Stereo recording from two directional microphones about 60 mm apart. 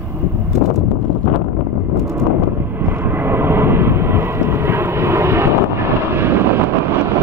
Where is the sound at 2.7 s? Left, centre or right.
Right.